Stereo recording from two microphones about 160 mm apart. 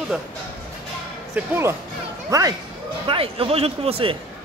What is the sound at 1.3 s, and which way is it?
Speech, 15° right (ahead or behind).